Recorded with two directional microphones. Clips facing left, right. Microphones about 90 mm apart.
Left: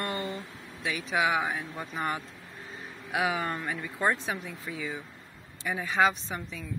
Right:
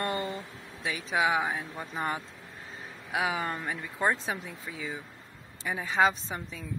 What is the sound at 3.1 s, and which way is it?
A woman's voice, 25° right (ahead or behind).